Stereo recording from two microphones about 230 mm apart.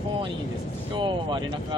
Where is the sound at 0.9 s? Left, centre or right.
Right.